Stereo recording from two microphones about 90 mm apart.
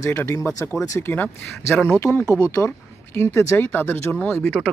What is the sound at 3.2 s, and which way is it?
Speech, 30° left (ahead or behind).